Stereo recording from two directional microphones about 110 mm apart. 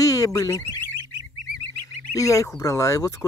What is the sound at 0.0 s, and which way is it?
Car alarm, 35° left (ahead or behind).